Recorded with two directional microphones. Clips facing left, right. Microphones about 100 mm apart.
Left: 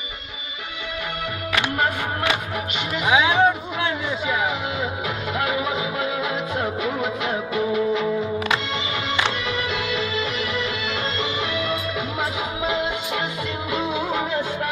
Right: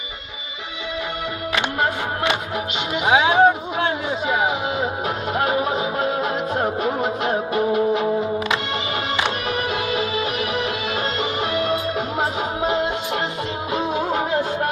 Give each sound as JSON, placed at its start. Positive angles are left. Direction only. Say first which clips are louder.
{"t": 2.9, "sound": "music", "louder": "right 2 dB", "side_deg": -30}
{"t": 9.5, "sound": "music", "louder": "right 2 dB", "side_deg": -45}